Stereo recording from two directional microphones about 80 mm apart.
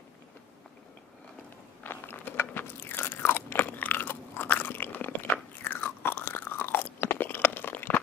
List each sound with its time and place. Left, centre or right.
1.8 s crunch: left